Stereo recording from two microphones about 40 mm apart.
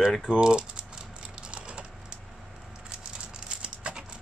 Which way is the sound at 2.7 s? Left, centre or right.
Right.